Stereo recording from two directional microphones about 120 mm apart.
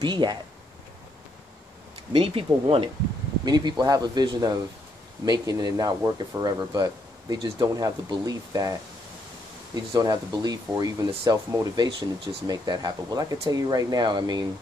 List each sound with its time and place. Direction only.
0.0 s speech: 40° right (ahead or behind)
2.1 s speech: 50° right (ahead or behind)
3.4 s speech: 35° right (ahead or behind)
9.8 s speech: 35° right (ahead or behind)